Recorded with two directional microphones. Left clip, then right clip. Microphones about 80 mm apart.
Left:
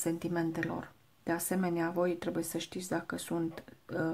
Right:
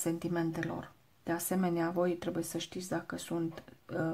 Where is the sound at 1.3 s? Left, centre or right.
Centre.